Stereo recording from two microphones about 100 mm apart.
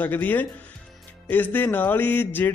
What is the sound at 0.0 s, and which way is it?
A man's voice, 15° left (ahead or behind).